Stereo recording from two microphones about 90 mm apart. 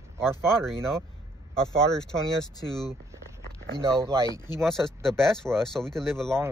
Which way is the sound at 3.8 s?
35° right (ahead or behind).